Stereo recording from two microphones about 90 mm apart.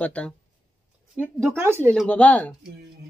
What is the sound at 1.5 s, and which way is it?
Speech, 25° right (ahead or behind).